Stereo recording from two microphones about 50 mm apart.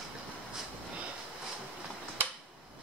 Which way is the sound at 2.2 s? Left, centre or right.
Right.